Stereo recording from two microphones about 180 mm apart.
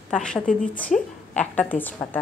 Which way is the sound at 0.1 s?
5° left (ahead or behind).